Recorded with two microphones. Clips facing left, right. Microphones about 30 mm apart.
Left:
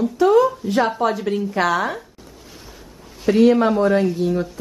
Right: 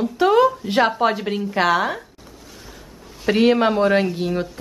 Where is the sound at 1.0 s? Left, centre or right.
Right.